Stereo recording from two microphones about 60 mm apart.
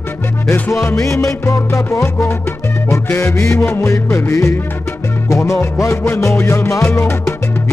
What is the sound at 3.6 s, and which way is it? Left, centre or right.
Music, left.